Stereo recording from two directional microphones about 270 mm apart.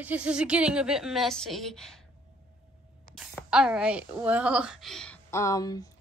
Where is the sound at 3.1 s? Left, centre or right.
Centre.